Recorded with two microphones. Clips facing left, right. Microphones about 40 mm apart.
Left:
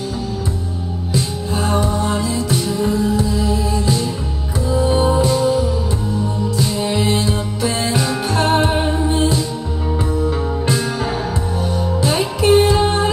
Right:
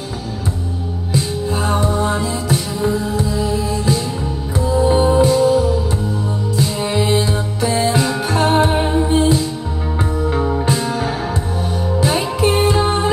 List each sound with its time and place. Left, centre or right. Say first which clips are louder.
1.1 s music: right 2 dB; right
6.5 s music: right 2 dB; right
8.6 s music: right 2 dB; centre
10.1 s music: right 2 dB; right